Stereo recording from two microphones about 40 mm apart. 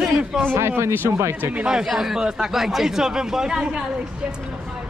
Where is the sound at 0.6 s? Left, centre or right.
Right.